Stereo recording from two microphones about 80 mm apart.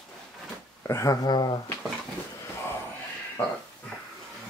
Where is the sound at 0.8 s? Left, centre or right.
Left.